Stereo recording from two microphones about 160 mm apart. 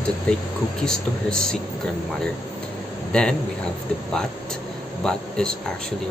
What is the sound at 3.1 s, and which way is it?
Speech, 5° left (ahead or behind).